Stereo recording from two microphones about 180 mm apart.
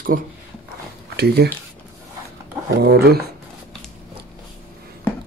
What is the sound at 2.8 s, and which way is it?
Speech, 60° right (ahead or behind).